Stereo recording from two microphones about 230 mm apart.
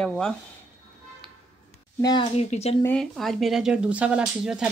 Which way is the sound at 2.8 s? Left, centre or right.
Centre.